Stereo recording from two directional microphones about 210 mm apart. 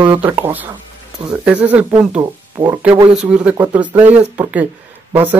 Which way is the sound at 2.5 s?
15° right (ahead or behind).